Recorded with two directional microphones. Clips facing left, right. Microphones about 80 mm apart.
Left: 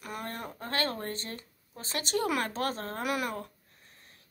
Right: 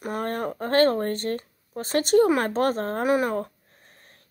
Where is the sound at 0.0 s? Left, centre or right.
Right.